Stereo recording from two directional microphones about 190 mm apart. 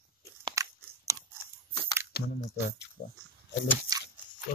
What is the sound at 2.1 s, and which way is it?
Squish, 55° left (ahead or behind).